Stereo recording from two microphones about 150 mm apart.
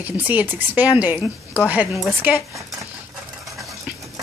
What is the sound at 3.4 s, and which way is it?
Stir, centre (ahead or behind).